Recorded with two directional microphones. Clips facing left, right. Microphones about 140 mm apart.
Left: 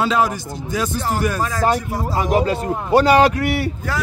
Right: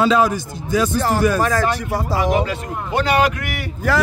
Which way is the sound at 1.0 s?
80° right.